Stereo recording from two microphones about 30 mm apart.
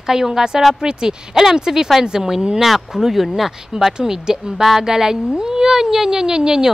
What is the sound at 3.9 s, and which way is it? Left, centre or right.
Speech, centre.